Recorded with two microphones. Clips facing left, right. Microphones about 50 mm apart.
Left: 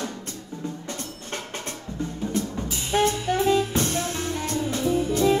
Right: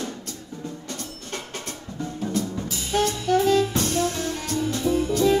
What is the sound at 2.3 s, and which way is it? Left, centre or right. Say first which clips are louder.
Jazz: right 1 dB; left.